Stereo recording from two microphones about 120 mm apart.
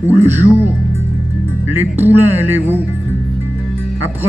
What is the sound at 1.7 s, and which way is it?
Speech, 15° right (ahead or behind).